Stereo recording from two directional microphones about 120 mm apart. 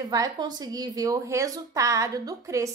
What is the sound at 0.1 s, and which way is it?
A woman's voice, 30° right (ahead or behind).